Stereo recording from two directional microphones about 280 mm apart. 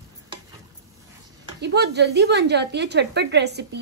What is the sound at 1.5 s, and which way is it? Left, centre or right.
A woman's voice, right.